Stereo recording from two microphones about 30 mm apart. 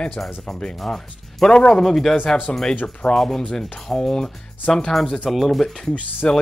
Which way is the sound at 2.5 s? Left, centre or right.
Left.